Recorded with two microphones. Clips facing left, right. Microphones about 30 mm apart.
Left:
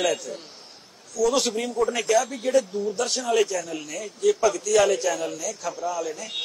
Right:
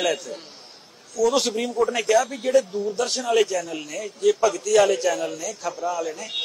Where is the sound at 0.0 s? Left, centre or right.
Centre.